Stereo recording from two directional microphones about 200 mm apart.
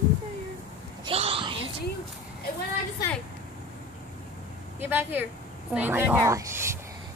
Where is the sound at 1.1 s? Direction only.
30° right (ahead or behind).